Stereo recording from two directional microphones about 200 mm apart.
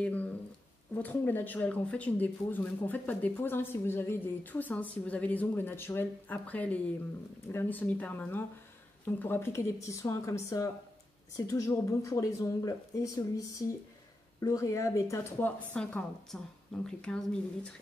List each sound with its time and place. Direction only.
0.0 s speech: 10° left (ahead or behind)